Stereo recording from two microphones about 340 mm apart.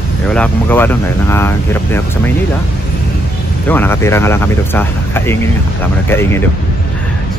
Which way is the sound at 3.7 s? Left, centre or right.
Centre.